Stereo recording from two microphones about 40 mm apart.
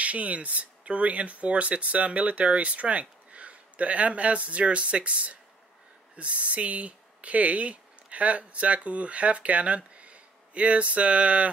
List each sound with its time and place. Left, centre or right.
0.0 s speech: right